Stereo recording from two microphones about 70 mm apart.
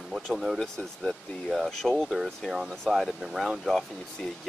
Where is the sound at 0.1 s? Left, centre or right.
Centre.